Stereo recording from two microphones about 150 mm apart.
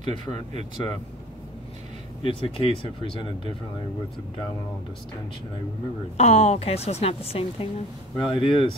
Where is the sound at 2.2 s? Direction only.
35° left (ahead or behind).